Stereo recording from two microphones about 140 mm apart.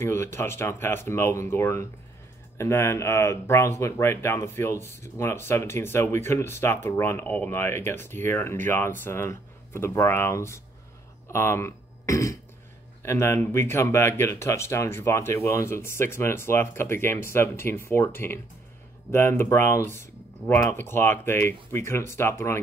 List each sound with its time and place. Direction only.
0.0 s speech: 15° left (ahead or behind)